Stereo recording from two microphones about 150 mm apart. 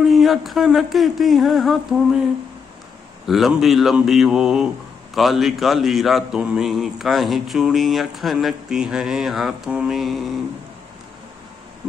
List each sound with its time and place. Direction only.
0.0 s a man's voice: centre (ahead or behind)
3.3 s a man's voice: centre (ahead or behind)